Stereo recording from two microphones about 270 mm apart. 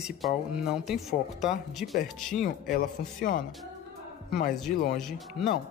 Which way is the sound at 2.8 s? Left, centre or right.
Left.